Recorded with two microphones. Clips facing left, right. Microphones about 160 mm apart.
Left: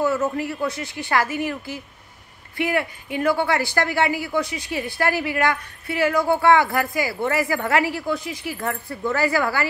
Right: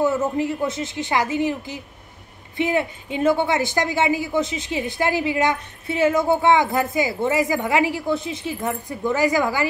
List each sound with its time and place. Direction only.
0.0 s speech: 20° right (ahead or behind)